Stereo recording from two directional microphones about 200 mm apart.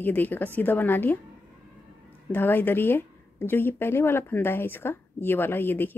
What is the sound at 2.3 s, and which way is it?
Speech, 10° left (ahead or behind).